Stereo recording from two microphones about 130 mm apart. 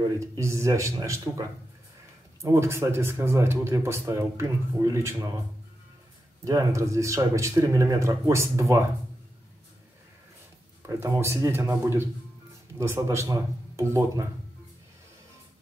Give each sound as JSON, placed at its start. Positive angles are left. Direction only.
{"t": 0.2, "sound": "speech", "side_deg": -25}
{"t": 6.4, "sound": "speech", "side_deg": -25}
{"t": 10.8, "sound": "speech", "side_deg": -25}